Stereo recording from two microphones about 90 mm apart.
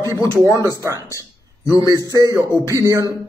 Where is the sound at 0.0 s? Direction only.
40° right (ahead or behind).